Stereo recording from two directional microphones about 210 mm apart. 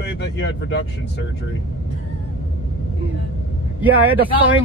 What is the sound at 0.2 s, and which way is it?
Speech, 50° left (ahead or behind).